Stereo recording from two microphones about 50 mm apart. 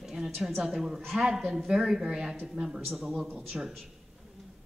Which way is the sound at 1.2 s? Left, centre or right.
Centre.